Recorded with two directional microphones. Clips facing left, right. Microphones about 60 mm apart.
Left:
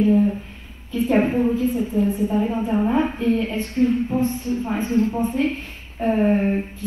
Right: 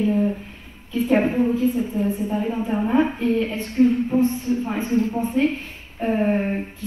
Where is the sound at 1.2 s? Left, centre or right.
Left.